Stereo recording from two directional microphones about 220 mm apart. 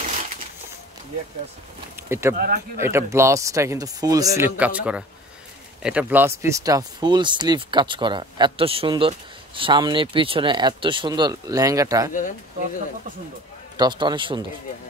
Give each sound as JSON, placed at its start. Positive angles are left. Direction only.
{"t": 2.0, "sound": "speech", "side_deg": -10}
{"t": 2.3, "sound": "speech", "side_deg": -40}
{"t": 2.8, "sound": "speech", "side_deg": -10}
{"t": 12.1, "sound": "speech", "side_deg": 35}
{"t": 13.7, "sound": "speech", "side_deg": -20}